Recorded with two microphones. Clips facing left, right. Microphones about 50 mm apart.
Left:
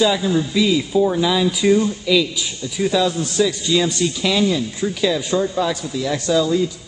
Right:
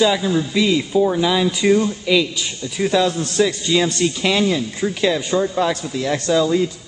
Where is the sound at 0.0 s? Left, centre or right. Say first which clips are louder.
Even; centre.